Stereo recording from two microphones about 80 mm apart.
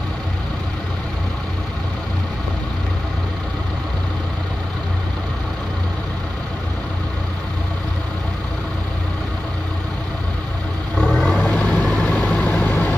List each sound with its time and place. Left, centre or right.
11.0 s vehicle: centre
11.4 s vehicle: centre